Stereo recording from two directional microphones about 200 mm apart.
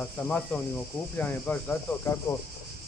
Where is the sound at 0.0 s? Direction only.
5° left (ahead or behind).